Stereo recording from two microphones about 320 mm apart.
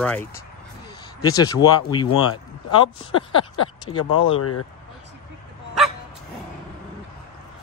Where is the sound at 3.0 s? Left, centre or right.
Centre.